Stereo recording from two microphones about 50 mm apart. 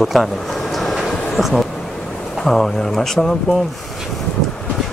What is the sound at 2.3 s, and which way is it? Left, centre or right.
Speech, centre.